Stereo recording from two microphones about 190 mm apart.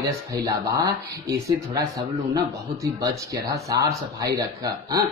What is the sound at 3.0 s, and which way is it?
A man's voice, 15° right (ahead or behind).